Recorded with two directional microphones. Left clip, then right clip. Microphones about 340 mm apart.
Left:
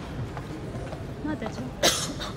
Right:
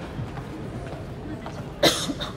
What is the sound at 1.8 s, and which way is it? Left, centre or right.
Cough, right.